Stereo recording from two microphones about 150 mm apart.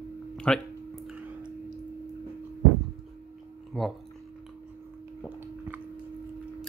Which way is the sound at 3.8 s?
5° left (ahead or behind).